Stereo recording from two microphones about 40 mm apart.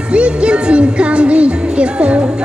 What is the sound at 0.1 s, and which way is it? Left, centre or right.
Music, right.